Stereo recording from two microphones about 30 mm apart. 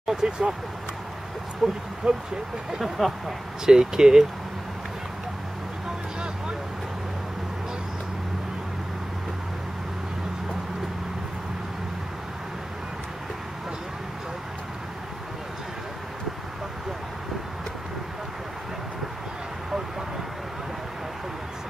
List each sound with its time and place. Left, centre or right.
0.0 s vehicle: centre
1.6 s speech: centre
2.8 s a sound: centre
3.6 s speech: right